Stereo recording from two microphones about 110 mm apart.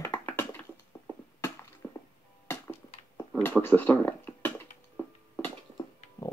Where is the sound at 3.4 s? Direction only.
15° left (ahead or behind).